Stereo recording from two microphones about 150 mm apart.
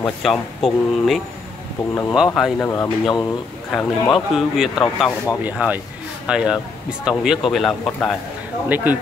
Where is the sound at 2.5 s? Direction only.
15° left (ahead or behind).